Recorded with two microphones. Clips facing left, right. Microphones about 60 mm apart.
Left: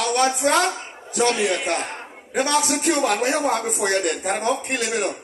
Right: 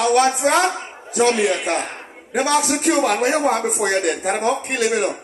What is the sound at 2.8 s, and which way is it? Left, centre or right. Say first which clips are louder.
Speech: right 3 dB; right.